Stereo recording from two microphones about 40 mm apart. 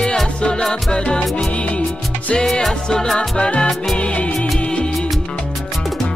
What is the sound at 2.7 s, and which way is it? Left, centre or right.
Music, centre.